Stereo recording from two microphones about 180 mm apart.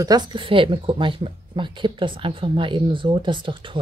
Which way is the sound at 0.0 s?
25° right (ahead or behind).